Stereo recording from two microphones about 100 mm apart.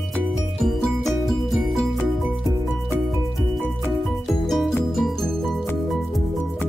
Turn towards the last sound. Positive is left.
turn(degrees=0)  # may be behind; listen again after turning